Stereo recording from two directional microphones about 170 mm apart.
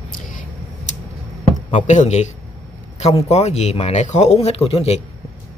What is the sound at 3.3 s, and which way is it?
Speech, 40° left (ahead or behind).